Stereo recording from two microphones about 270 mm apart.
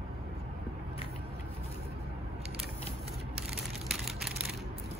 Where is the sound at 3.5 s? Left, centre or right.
Centre.